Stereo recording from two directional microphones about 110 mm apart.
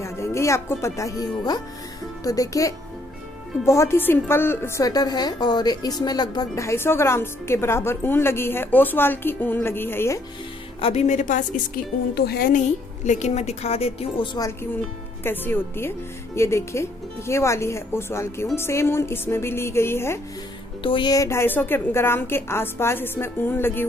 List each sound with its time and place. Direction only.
0.0 s a child's voice: 25° left (ahead or behind)
10.8 s a woman's voice: 70° left (ahead or behind)
12.6 s a woman's voice: 90° left; by 14.3 s 65° left (ahead or behind)
14.6 s a woman's voice: 20° left (ahead or behind)
20.8 s speech: 50° left (ahead or behind)
21.1 s a woman's voice: 25° left (ahead or behind)